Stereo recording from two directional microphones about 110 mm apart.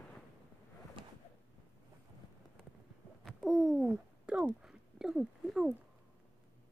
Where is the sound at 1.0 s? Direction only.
55° right (ahead or behind).